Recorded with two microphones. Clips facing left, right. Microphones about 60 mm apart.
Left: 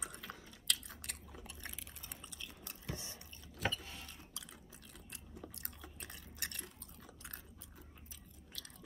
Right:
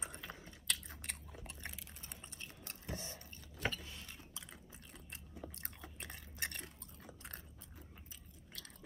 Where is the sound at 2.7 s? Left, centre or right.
Right.